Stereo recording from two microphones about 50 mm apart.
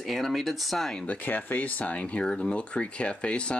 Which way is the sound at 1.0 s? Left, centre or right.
Left.